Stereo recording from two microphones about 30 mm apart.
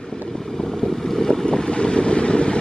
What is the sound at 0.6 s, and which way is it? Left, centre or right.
Boat, centre.